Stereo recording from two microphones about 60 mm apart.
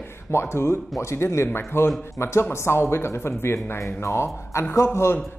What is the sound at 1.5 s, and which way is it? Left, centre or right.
Speech, left.